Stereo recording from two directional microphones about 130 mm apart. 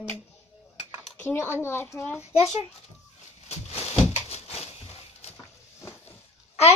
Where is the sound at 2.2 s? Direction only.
55° left (ahead or behind).